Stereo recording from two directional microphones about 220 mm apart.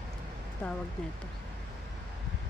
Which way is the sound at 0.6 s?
5° left (ahead or behind).